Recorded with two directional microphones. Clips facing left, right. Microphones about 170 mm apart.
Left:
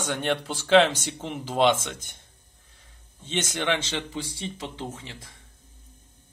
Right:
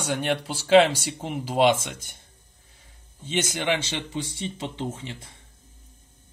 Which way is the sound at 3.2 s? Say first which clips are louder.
Right 1 dB; 10° right (ahead or behind).